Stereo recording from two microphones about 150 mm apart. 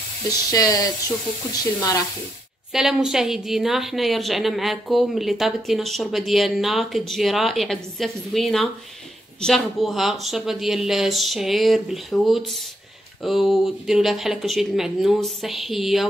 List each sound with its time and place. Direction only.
0.3 s speech: 25° left (ahead or behind)
2.7 s a woman's voice: 5° right (ahead or behind)